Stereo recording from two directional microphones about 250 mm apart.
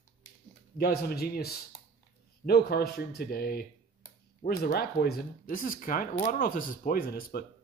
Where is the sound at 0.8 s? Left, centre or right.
Left.